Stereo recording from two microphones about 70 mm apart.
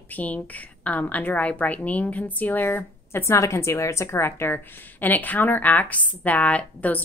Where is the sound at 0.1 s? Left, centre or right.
Left.